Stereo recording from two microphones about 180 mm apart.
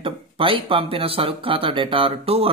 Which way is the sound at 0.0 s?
30° right (ahead or behind).